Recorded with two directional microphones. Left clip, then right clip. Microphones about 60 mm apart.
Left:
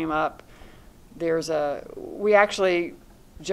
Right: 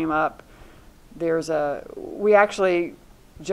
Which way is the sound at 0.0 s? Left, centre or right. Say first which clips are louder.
Right 3 dB; centre.